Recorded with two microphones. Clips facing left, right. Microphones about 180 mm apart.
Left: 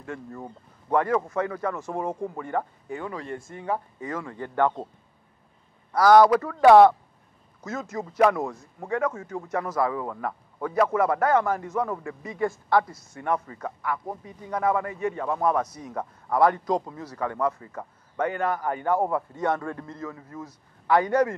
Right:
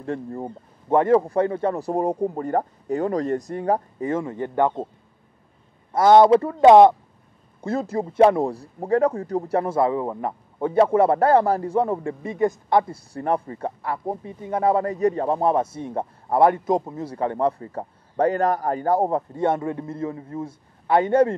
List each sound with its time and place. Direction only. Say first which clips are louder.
0.0 s speech: right 8 dB; 35° right (ahead or behind)
4.1 s speech: right 7 dB; 25° right (ahead or behind)
5.9 s speech: right 3 dB; 25° right (ahead or behind)
7.6 s speech: right 8 dB; 30° right (ahead or behind)